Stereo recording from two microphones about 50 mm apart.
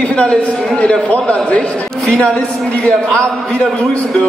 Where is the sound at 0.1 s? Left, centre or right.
Left.